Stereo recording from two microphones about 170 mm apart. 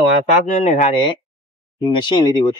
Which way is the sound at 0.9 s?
25° left (ahead or behind).